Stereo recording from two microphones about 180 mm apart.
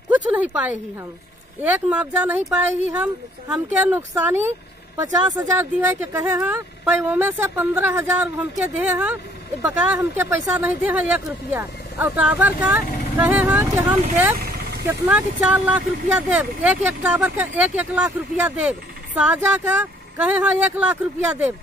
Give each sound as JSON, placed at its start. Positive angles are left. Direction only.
{"t": 0.1, "sound": "a sound", "side_deg": -10}
{"t": 1.6, "sound": "speech", "side_deg": -10}
{"t": 14.4, "sound": "vehicle", "side_deg": -60}
{"t": 14.9, "sound": "speech", "side_deg": -5}